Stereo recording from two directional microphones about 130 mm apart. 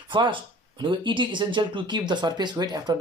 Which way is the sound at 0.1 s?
35° right (ahead or behind).